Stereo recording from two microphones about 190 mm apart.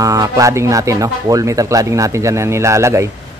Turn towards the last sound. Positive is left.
turn(degrees=-15)  # may be behind; listen again after turning